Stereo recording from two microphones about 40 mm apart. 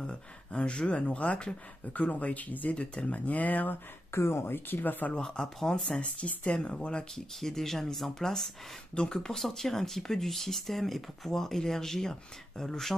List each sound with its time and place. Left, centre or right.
0.0 s speech: left
4.1 s speech: left
5.2 s speech: centre
5.9 s speech: left
7.3 s speech: centre